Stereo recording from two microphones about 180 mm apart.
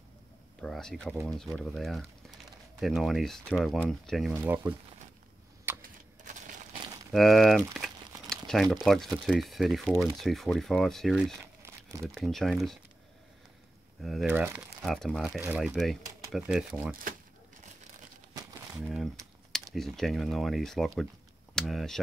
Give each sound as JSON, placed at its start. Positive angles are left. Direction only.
{"t": 0.6, "sound": "speech", "side_deg": 5}
{"t": 4.3, "sound": "speech", "side_deg": -10}
{"t": 5.8, "sound": "a sound", "side_deg": -50}
{"t": 7.1, "sound": "speech", "side_deg": 0}
{"t": 8.3, "sound": "crumpling", "side_deg": 5}
{"t": 8.7, "sound": "speech", "side_deg": 0}
{"t": 11.6, "sound": "crumpling", "side_deg": -15}
{"t": 12.2, "sound": "speech", "side_deg": 0}
{"t": 14.0, "sound": "speech", "side_deg": 0}
{"t": 14.3, "sound": "speech", "side_deg": -10}
{"t": 18.3, "sound": "crumpling", "side_deg": -20}
{"t": 18.8, "sound": "speech", "side_deg": -5}